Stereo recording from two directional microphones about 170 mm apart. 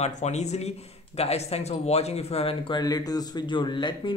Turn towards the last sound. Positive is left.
turn(degrees=30)  # may be behind; listen again after turning